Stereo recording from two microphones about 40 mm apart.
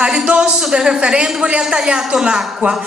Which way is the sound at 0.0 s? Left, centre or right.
Right.